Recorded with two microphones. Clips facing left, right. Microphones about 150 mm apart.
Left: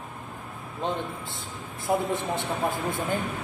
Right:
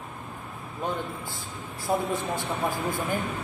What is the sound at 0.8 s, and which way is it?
A man's voice, 25° left (ahead or behind).